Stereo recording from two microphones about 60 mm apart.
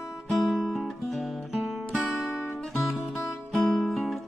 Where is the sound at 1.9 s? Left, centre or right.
Left.